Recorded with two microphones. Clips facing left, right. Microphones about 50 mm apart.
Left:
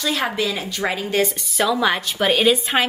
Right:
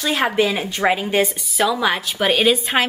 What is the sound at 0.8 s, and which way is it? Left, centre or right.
Speech, centre.